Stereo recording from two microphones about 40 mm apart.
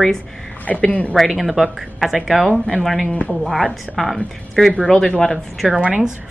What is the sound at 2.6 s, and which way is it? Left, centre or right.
A woman's voice, centre.